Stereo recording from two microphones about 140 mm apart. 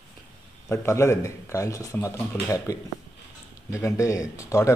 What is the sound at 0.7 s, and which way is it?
A man's voice, 20° left (ahead or behind).